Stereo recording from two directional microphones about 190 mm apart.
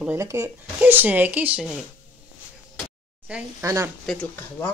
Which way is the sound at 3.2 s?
10° right (ahead or behind).